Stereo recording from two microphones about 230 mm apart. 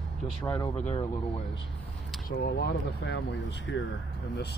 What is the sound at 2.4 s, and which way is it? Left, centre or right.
Speech, left.